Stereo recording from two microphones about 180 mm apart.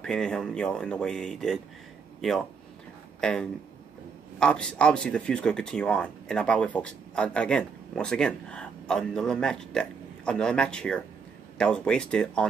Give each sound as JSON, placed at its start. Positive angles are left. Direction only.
{"t": 0.0, "sound": "speech", "side_deg": 5}
{"t": 3.2, "sound": "speech", "side_deg": 5}